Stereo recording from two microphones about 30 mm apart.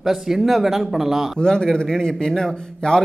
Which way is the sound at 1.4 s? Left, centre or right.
Left.